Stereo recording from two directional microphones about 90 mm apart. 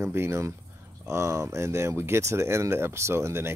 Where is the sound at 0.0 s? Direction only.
25° right (ahead or behind).